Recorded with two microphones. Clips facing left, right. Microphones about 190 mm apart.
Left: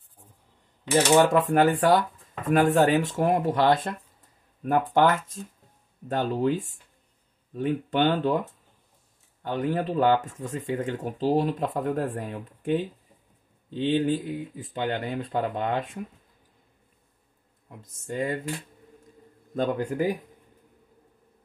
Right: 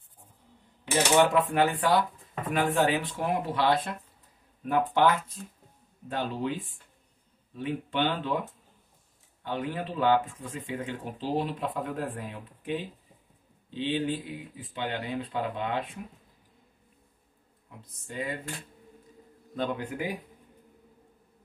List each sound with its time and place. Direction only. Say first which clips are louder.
1.1 s speech: left 3 dB; 45° left (ahead or behind)
9.4 s speech: left 6 dB; 45° left (ahead or behind)
17.8 s speech: left 6 dB; 45° left (ahead or behind)
19.5 s speech: left 5 dB; 45° left (ahead or behind)